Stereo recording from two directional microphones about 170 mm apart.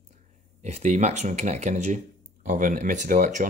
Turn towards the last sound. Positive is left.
turn(degrees=-45)  # may be behind; listen again after turning